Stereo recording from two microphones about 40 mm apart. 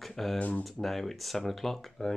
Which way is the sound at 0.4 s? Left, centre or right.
Left.